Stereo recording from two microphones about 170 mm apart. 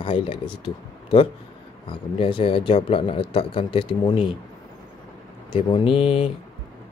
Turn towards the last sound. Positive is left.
turn(degrees=30)  # may be behind; listen again after turning